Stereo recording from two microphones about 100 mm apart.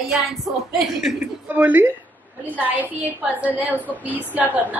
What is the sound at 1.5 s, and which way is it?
A woman's voice, 20° right (ahead or behind).